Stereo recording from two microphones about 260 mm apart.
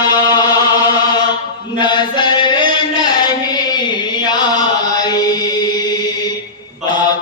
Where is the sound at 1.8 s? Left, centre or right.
Centre.